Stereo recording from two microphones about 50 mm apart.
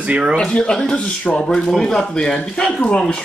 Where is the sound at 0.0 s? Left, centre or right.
Right.